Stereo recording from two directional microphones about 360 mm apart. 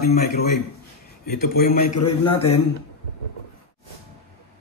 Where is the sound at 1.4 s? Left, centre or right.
Left.